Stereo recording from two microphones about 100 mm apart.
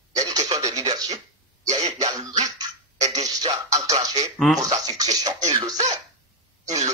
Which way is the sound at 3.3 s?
40° right (ahead or behind).